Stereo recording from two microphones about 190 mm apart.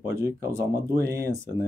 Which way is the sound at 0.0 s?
15° right (ahead or behind).